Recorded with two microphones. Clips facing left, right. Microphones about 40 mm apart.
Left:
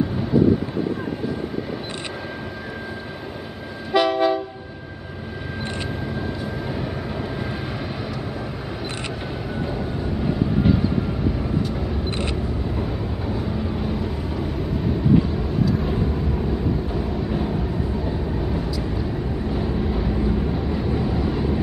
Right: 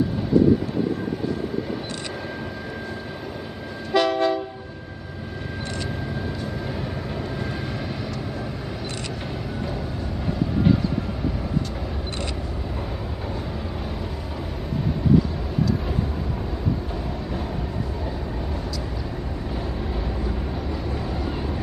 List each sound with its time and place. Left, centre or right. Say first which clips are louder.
3.9 s train: left 2 dB; centre
10.2 s vehicle: left 1 dB; centre
16.9 s vehicle: left 5 dB; centre
19.5 s vehicle: left 5 dB; centre